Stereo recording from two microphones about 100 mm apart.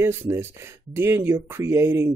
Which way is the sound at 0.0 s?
25° right (ahead or behind).